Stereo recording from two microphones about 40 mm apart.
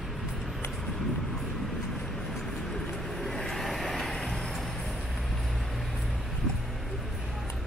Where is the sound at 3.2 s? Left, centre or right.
Centre.